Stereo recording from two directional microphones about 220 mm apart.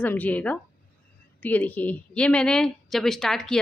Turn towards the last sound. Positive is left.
turn(degrees=0)  # may be behind; listen again after turning